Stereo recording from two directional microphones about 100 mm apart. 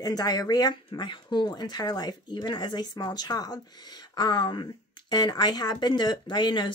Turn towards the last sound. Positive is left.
turn(degrees=50)  # may be behind; listen again after turning